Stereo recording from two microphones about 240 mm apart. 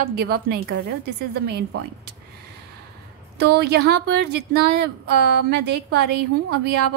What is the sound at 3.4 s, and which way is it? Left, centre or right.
A woman's voice, right.